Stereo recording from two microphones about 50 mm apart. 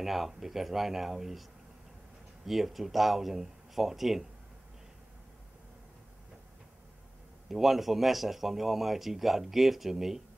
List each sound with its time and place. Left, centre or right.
0.0 s speech: centre
2.4 s speech: centre
7.4 s speech: centre